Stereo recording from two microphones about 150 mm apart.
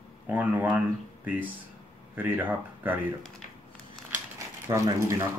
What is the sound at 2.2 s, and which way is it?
Speech, 10° right (ahead or behind).